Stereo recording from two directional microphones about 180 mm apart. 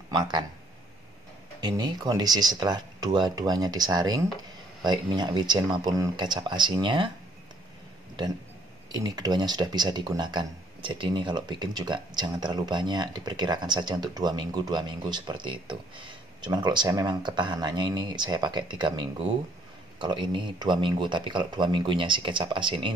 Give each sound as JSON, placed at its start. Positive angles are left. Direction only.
{"t": 0.1, "sound": "speech", "side_deg": -25}
{"t": 1.6, "sound": "speech", "side_deg": -25}
{"t": 8.9, "sound": "speech", "side_deg": -20}